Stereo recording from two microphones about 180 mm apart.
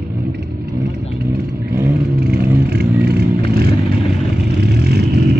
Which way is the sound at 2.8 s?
65° right (ahead or behind).